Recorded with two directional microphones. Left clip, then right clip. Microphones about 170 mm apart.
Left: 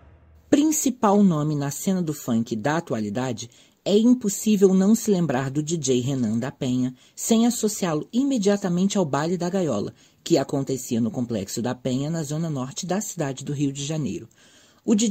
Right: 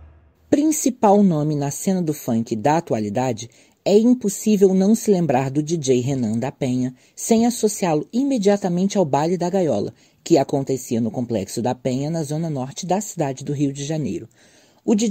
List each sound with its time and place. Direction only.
0.5 s speech: 15° right (ahead or behind)